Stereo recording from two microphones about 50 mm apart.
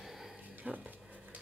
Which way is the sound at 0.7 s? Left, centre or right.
Centre.